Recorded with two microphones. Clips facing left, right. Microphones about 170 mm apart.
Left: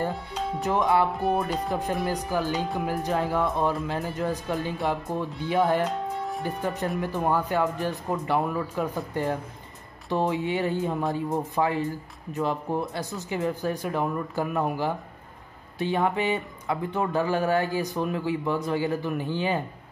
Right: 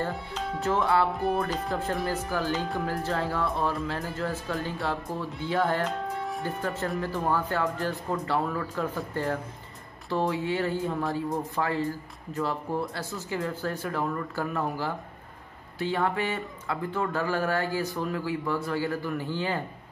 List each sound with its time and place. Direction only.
0.3 s speech: 15° left (ahead or behind)